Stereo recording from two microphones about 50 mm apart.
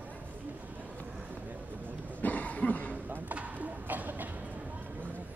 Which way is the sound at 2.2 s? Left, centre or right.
Left.